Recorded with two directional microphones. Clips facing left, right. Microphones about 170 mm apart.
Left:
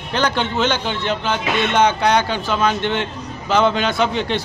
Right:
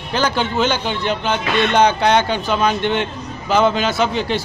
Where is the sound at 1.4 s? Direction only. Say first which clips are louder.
Right 2 dB; 5° left (ahead or behind).